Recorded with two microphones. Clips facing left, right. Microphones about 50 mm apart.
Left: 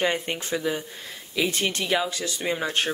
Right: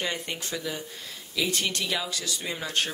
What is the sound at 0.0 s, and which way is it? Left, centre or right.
Speech, left.